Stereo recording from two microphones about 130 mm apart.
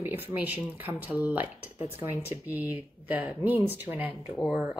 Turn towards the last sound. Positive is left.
turn(degrees=-10)  # may be behind; listen again after turning